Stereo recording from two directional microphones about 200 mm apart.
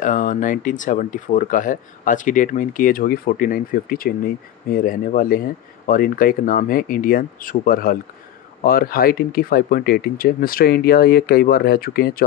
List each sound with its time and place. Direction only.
0.0 s speech: 40° left (ahead or behind)